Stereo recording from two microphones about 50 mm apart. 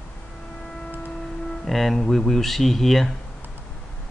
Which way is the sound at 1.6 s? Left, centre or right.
Centre.